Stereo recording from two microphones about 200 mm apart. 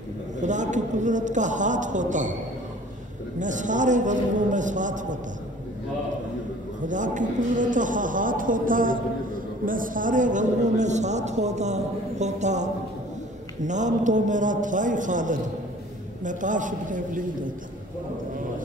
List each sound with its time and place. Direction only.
0.4 s a man's voice: 40° right (ahead or behind)
3.3 s a man's voice: 40° right (ahead or behind)
6.9 s a man's voice: 40° right (ahead or behind)
13.7 s a man's voice: 35° right (ahead or behind)